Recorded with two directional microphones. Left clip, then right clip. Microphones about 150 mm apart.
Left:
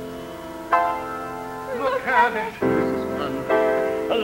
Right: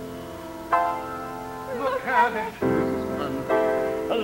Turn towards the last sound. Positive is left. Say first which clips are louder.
# left 3 dB
turn(degrees=-30)  # may be behind; listen again after turning